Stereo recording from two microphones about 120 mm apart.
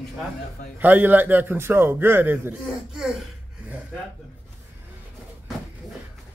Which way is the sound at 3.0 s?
5° right (ahead or behind).